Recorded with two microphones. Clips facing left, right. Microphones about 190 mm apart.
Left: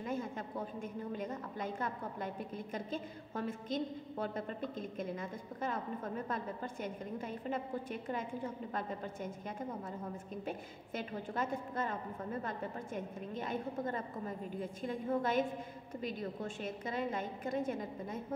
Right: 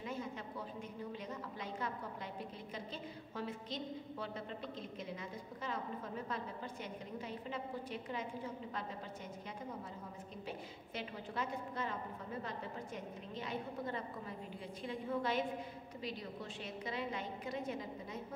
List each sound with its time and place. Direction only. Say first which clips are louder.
0.0 s a sound: left 4 dB; 50° left (ahead or behind)
8.7 s a woman's voice: left 5 dB; 50° left (ahead or behind)
11.0 s a woman's voice: left 4 dB; 50° left (ahead or behind)